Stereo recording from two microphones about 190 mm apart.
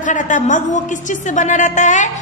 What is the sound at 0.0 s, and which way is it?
A woman's voice, 40° left (ahead or behind).